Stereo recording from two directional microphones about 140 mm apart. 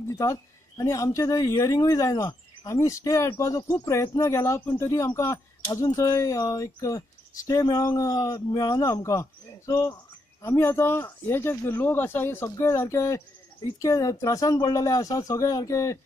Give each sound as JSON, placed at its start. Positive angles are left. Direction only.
{"t": 0.2, "sound": "speech", "side_deg": 25}